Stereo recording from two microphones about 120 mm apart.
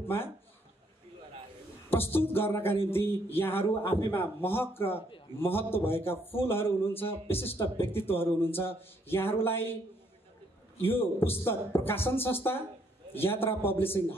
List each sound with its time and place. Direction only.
0.0 s speech: 20° left (ahead or behind)
1.9 s a man's voice: 20° left (ahead or behind)
10.8 s a man's voice: 20° left (ahead or behind)